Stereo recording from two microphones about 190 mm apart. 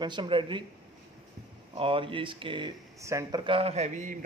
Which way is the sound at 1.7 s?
30° right (ahead or behind).